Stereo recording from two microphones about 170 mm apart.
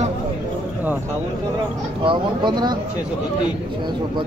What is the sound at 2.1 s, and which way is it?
Speech, 25° right (ahead or behind).